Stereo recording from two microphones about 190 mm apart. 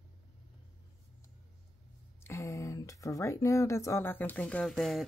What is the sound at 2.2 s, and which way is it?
Speech, 15° left (ahead or behind).